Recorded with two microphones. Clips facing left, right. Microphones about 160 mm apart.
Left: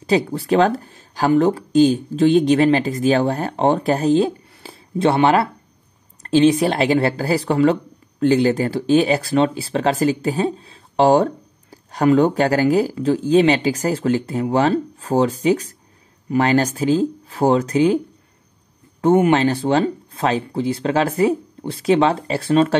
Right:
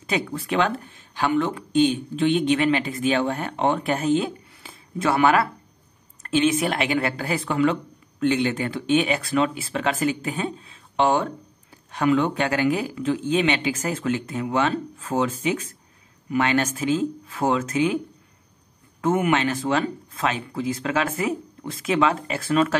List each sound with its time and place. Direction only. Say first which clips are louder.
0.0 s speech: left 8 dB; 35° left (ahead or behind)